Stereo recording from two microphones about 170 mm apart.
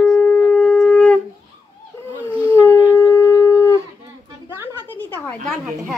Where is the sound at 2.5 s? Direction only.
10° left (ahead or behind).